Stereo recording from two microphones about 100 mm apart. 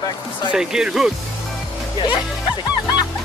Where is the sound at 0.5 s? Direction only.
5° right (ahead or behind).